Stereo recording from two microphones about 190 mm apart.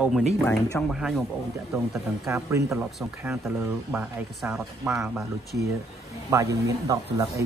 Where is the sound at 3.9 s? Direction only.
5° right (ahead or behind).